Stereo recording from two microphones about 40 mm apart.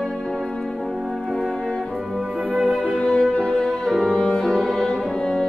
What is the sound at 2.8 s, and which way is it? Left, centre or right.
Music, left.